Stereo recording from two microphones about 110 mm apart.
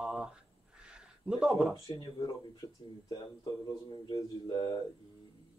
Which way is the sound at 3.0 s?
50° left (ahead or behind).